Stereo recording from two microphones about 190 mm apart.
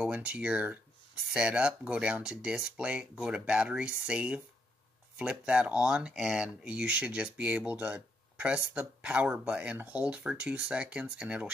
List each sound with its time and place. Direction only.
0.0 s speech: 5° right (ahead or behind)